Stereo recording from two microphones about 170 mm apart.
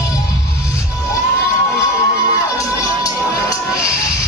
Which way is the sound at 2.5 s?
20° left (ahead or behind).